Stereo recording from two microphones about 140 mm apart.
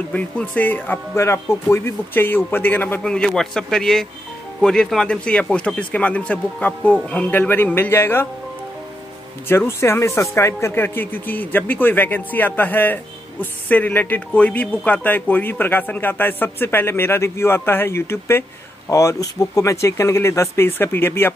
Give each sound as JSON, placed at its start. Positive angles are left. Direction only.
{"t": 0.1, "sound": "speech", "side_deg": 10}
{"t": 9.5, "sound": "speech", "side_deg": 15}